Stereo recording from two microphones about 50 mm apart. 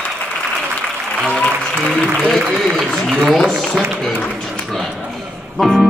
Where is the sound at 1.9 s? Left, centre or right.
Centre.